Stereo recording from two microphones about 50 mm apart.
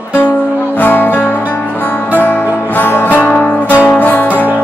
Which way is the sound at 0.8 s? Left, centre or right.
Left.